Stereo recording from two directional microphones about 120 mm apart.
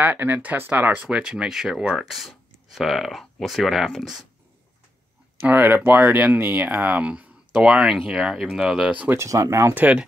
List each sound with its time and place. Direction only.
0.0 s speech: 15° right (ahead or behind)
5.4 s speech: 15° right (ahead or behind)
9.1 s speech: 25° right (ahead or behind)